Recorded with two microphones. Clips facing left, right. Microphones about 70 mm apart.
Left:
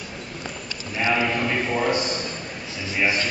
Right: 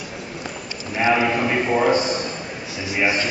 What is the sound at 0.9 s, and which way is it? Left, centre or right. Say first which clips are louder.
A man's voice: right 4 dB; centre.